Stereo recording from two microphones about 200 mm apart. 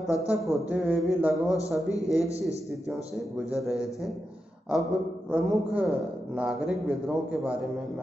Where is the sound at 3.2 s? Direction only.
Centre (ahead or behind).